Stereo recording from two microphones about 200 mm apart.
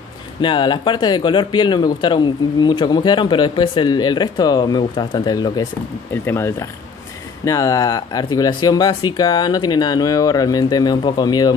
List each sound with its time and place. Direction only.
0.4 s speech: 25° left (ahead or behind)